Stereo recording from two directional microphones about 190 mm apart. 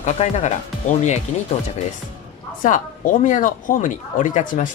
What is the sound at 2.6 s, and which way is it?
Speech, 45° left (ahead or behind).